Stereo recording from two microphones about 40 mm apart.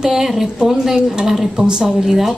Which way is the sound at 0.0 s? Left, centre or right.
Centre.